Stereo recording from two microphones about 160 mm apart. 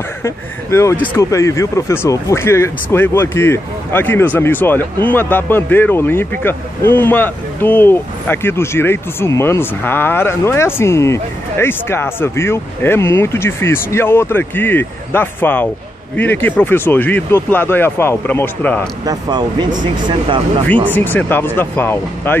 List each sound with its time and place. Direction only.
0.2 s speech: 15° left (ahead or behind)
19.0 s speech: 25° right (ahead or behind)
20.9 s speech: 10° left (ahead or behind)